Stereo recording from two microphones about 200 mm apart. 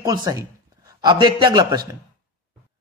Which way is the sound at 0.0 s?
20° right (ahead or behind).